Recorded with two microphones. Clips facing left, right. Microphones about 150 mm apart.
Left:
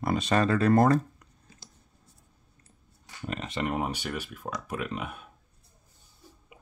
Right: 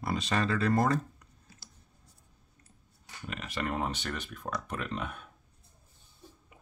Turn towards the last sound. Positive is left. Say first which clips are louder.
# left 2 dB
turn(degrees=10)  # may be behind; listen again after turning